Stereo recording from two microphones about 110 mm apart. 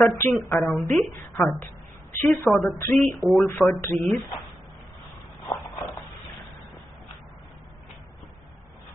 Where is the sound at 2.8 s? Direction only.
30° left (ahead or behind).